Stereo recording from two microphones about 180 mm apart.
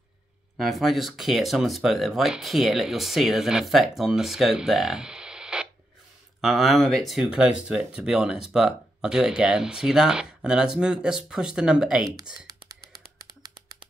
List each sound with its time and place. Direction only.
0.6 s speech: centre (ahead or behind)
12.4 s computer keyboard: 20° right (ahead or behind)